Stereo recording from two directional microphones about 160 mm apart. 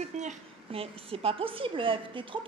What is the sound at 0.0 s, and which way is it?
A woman's voice, 45° right (ahead or behind).